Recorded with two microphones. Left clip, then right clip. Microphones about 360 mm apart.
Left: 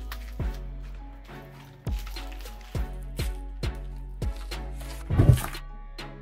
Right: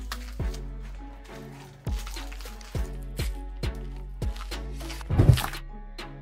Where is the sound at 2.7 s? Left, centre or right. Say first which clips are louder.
Even; centre.